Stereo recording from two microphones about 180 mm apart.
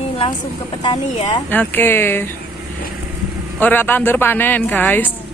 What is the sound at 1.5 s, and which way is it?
Speech, 10° left (ahead or behind).